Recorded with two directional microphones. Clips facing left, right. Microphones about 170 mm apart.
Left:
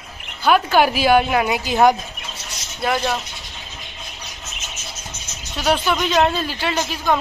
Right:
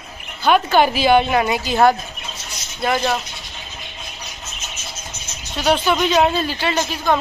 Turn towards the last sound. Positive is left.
turn(degrees=0)  # may be behind; listen again after turning